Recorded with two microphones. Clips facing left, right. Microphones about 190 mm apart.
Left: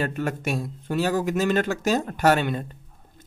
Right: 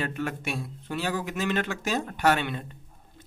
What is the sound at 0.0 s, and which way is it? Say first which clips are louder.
Speech: left 4 dB; 40° left (ahead or behind).